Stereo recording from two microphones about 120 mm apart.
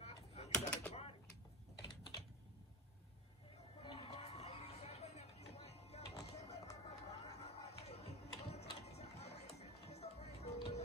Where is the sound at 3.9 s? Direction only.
60° left (ahead or behind).